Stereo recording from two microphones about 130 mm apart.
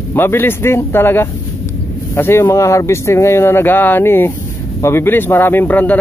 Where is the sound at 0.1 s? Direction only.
15° left (ahead or behind).